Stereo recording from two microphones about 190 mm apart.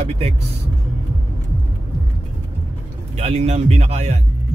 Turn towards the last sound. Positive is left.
turn(degrees=-35)  # may be behind; listen again after turning